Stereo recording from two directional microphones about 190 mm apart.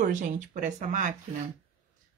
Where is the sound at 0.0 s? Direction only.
45° right (ahead or behind).